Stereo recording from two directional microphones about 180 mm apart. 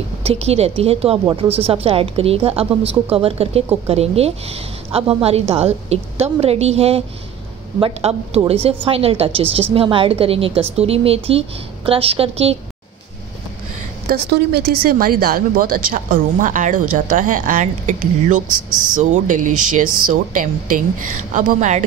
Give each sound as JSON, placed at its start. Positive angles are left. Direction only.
{"t": 0.2, "sound": "a woman's voice", "side_deg": -35}
{"t": 14.1, "sound": "a woman's voice", "side_deg": -55}